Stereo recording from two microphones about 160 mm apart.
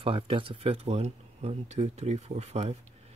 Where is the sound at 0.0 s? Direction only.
35° right (ahead or behind).